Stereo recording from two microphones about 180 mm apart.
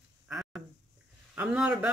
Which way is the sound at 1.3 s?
5° right (ahead or behind).